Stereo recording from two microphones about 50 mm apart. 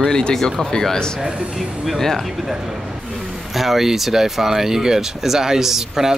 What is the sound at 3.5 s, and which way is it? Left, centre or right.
Speech, centre.